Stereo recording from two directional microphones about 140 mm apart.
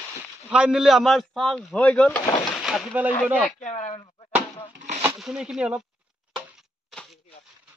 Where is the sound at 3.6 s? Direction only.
50° left (ahead or behind).